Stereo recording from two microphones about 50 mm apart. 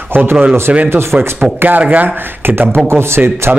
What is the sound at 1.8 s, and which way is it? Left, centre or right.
Speech, right.